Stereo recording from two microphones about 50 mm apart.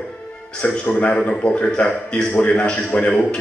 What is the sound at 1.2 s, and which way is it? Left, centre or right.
A man's voice, left.